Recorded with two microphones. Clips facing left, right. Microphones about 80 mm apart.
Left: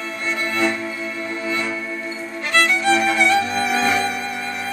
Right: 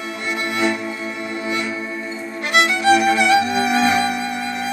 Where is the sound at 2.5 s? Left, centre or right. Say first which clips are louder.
Right 2 dB; right.